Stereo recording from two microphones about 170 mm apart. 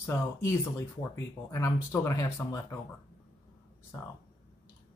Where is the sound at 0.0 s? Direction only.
15° left (ahead or behind).